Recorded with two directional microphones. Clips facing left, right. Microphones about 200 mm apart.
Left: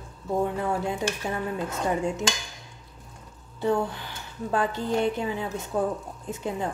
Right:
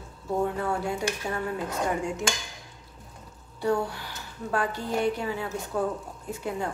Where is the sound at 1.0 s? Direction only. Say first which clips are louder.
Left 1 dB; 15° right (ahead or behind).